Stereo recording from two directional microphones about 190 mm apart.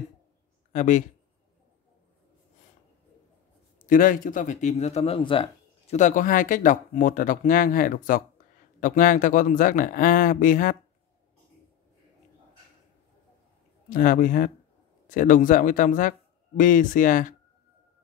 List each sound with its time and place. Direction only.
0.7 s speech: 40° left (ahead or behind)
3.8 s speech: 45° left (ahead or behind); by 5.9 s 30° left (ahead or behind)
5.9 s speech: 40° left (ahead or behind)
13.8 s speech: 45° left (ahead or behind)